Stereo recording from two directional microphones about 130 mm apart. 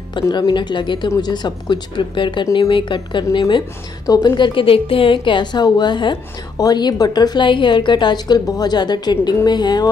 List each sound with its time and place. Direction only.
0.1 s a woman's voice: 35° left (ahead or behind)